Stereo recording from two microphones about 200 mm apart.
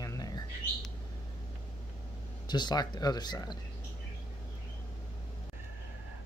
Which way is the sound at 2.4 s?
20° left (ahead or behind).